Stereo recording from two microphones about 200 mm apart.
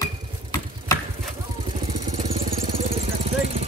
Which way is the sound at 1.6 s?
30° right (ahead or behind).